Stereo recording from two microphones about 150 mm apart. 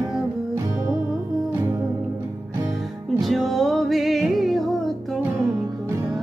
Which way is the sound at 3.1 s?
Centre (ahead or behind).